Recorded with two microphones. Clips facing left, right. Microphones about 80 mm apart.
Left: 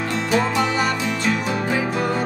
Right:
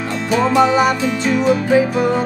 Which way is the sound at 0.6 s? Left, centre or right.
Right.